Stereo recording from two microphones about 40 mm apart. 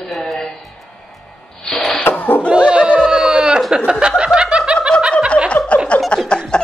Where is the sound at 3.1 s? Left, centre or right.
Centre.